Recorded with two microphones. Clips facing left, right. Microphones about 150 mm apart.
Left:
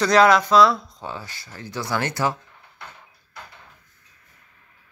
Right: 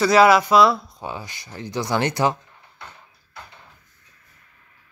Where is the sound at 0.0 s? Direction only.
5° right (ahead or behind).